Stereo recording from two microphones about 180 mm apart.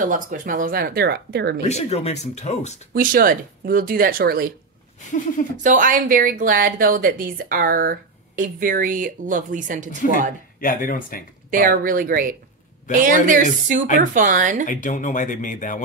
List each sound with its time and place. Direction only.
0.0 s speech: 50° right (ahead or behind); by 1.6 s 65° right (ahead or behind)
1.6 s speech: 40° left (ahead or behind)
2.9 s a woman's voice: 50° right (ahead or behind)
5.6 s a woman's voice: 45° right (ahead or behind)
10.6 s speech: 50° left (ahead or behind)
11.5 s a woman's voice: 50° right (ahead or behind)
14.7 s speech: 45° left (ahead or behind)